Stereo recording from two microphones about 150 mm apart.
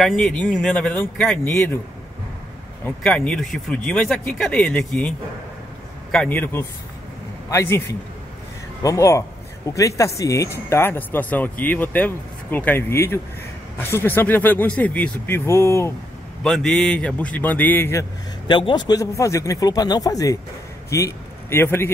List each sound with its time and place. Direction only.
0.0 s speech: 5° left (ahead or behind)
2.8 s speech: 10° left (ahead or behind)
6.1 s a man's voice: 10° left (ahead or behind)
16.4 s speech: 5° left (ahead or behind)
18.5 s a man's voice: 30° left (ahead or behind); by 21.9 s 15° left (ahead or behind)